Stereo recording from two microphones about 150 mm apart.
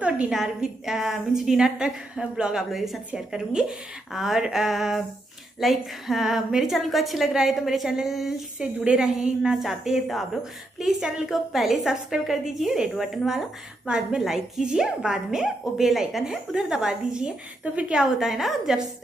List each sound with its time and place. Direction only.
0.0 s a woman's voice: 5° right (ahead or behind)